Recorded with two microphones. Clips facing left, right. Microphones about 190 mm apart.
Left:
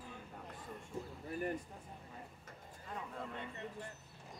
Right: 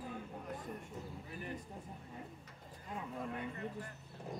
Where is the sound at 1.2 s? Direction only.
50° left (ahead or behind).